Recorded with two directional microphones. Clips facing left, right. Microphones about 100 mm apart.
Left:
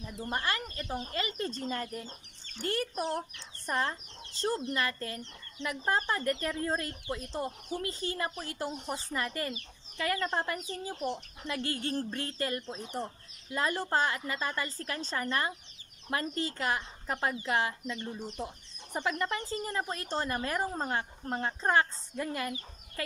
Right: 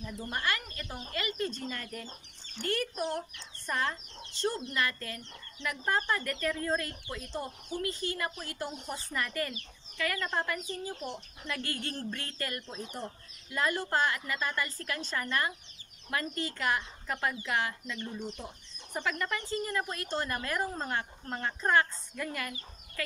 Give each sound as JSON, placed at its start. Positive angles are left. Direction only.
{"t": 0.3, "sound": "speech", "side_deg": 30}
{"t": 18.4, "sound": "speech", "side_deg": 40}